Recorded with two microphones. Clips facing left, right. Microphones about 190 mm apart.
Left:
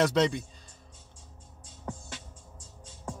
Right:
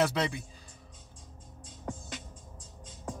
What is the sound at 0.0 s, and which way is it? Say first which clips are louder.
Speech: left 4 dB; 5° right (ahead or behind).